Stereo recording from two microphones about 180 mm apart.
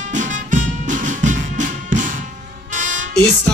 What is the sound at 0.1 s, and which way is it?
Music, 45° right (ahead or behind).